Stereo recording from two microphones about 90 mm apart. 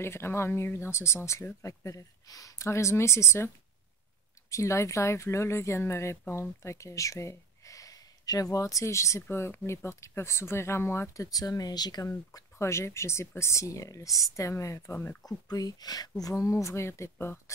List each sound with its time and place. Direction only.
0.0 s speech: 30° left (ahead or behind)
11.2 s speech: 45° left (ahead or behind)
12.3 s speech: 35° left (ahead or behind)
15.2 s speech: 45° left (ahead or behind); by 17.4 s 30° left (ahead or behind)